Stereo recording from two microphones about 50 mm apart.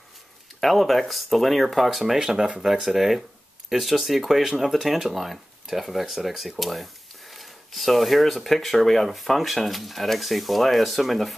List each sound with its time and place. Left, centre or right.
0.6 s speech: centre